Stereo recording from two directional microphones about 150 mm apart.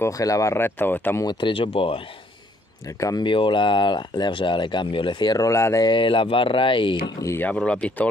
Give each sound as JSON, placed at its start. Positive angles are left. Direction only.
{"t": 0.0, "sound": "speech", "side_deg": 20}
{"t": 1.2, "sound": "speech", "side_deg": 35}
{"t": 3.0, "sound": "speech", "side_deg": 20}
{"t": 3.3, "sound": "speech", "side_deg": 35}
{"t": 5.9, "sound": "speech", "side_deg": 35}
{"t": 7.2, "sound": "speech", "side_deg": 15}